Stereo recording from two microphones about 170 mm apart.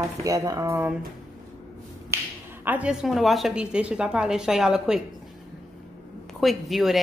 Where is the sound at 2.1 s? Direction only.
15° right (ahead or behind).